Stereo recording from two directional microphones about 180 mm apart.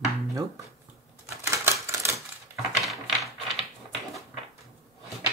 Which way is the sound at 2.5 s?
Centre (ahead or behind).